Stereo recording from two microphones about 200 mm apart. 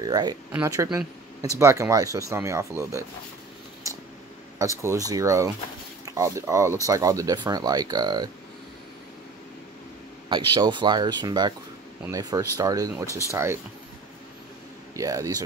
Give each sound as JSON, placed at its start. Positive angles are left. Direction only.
{"t": 0.0, "sound": "speech", "side_deg": -20}
{"t": 4.6, "sound": "speech", "side_deg": -15}
{"t": 10.3, "sound": "speech", "side_deg": -25}
{"t": 15.0, "sound": "speech", "side_deg": -15}